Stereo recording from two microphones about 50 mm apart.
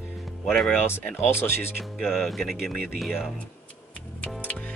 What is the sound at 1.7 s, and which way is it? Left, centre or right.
Speech, centre.